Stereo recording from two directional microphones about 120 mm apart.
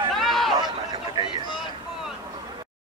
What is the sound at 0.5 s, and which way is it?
Speech, 35° right (ahead or behind).